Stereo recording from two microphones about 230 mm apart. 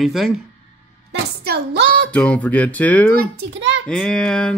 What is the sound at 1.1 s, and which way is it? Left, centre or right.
A woman's voice, right.